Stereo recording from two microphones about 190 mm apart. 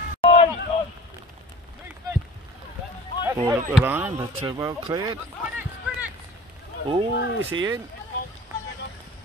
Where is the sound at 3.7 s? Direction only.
10° right (ahead or behind).